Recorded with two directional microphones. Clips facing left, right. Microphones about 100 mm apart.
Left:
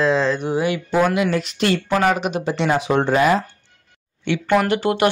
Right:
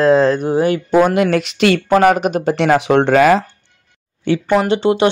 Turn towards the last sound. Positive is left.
turn(degrees=-25)  # may be behind; listen again after turning